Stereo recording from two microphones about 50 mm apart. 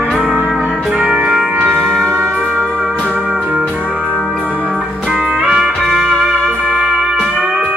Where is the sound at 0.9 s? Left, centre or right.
Right.